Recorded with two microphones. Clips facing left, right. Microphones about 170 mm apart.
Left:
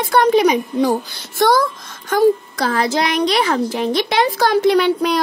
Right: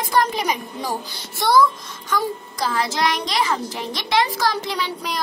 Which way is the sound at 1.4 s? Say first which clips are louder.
Left 2 dB; 45° left (ahead or behind).